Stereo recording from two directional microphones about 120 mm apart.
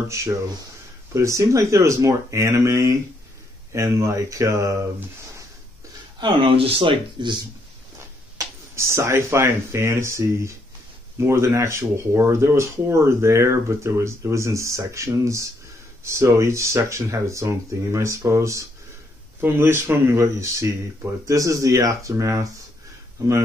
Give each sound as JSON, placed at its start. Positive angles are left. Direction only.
{"t": 0.1, "sound": "speech", "side_deg": -25}
{"t": 6.1, "sound": "speech", "side_deg": -45}
{"t": 8.7, "sound": "speech", "side_deg": -25}